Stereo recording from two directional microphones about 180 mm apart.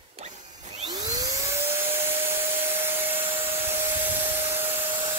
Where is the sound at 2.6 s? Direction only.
10° right (ahead or behind).